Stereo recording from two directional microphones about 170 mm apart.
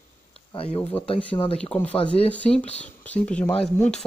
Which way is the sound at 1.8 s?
5° left (ahead or behind).